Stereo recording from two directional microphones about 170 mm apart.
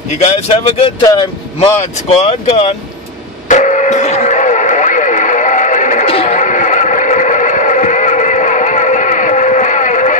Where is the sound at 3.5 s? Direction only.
45° left (ahead or behind).